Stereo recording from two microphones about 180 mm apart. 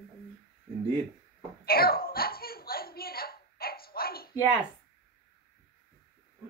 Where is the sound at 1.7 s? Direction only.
55° left (ahead or behind).